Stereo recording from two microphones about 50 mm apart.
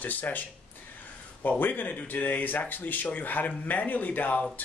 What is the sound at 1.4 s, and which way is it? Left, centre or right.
Speech, left.